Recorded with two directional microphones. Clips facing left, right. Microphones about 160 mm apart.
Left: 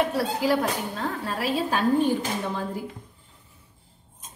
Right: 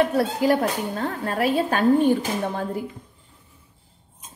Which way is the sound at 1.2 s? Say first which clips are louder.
Right 6 dB; 55° right (ahead or behind).